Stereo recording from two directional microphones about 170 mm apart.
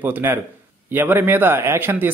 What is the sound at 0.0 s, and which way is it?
Speech, 10° right (ahead or behind).